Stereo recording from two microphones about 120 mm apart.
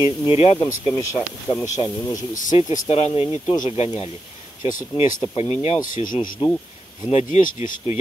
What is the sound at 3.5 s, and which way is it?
Speech, 75° left (ahead or behind).